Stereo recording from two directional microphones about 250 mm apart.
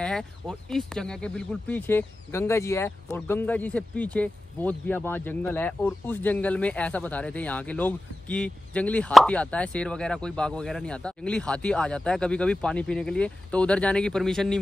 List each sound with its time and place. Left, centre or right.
0.0 s speech: centre